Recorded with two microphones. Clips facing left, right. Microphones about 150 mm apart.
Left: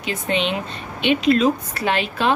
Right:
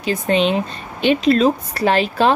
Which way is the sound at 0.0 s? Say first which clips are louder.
Right 6 dB; 35° right (ahead or behind).